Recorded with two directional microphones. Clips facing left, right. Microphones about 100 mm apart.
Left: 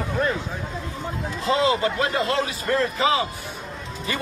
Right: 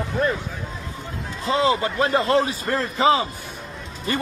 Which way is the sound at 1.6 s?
35° right (ahead or behind).